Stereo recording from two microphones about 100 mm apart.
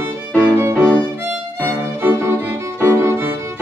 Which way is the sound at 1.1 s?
15° right (ahead or behind).